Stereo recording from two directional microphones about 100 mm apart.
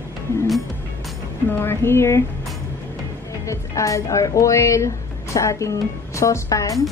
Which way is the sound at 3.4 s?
30° left (ahead or behind).